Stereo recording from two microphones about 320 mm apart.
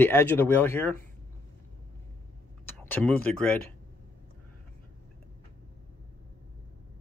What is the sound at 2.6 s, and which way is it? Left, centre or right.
Speech, centre.